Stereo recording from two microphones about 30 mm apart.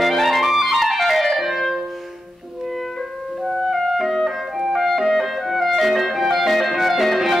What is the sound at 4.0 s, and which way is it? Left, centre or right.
Clarinet, centre.